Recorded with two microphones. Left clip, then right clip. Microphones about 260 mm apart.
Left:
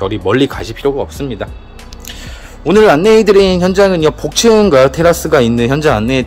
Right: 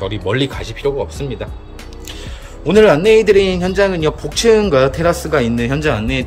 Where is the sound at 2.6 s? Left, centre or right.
Centre.